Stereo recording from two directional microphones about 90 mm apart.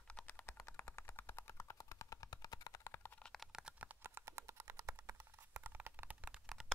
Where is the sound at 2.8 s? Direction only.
30° left (ahead or behind).